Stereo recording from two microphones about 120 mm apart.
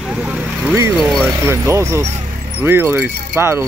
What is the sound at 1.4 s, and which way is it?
Speech, 20° right (ahead or behind).